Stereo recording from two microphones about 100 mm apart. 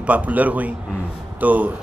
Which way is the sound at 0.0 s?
15° right (ahead or behind).